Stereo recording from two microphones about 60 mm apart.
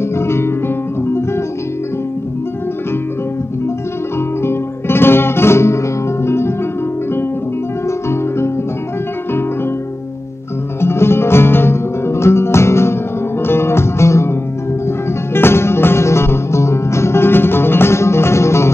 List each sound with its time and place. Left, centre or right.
0.1 s music: left
4.5 s music: left
10.8 s music: left
15.3 s music: left